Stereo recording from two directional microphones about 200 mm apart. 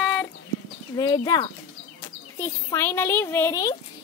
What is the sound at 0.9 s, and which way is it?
Speech, 20° left (ahead or behind).